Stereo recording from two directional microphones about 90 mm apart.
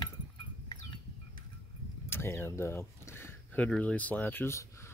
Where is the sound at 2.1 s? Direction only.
25° left (ahead or behind).